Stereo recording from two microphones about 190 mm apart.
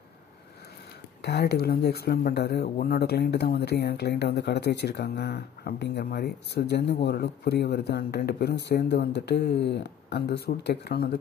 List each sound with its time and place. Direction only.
1.2 s speech: 60° left (ahead or behind)